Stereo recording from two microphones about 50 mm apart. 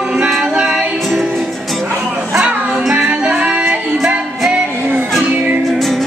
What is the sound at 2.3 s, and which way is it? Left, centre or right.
Music, centre.